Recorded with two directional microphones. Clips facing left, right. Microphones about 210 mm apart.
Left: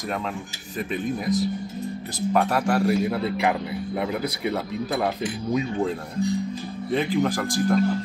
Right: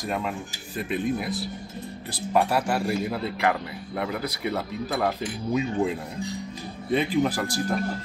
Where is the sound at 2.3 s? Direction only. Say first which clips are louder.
Left 1 dB; 5° right (ahead or behind).